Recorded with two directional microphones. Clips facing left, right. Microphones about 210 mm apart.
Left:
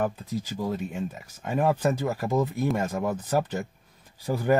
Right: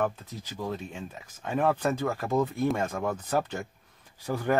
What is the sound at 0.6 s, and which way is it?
Speech, 10° left (ahead or behind).